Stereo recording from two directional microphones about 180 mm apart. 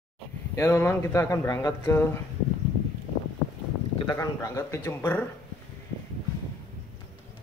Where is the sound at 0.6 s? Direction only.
15° left (ahead or behind).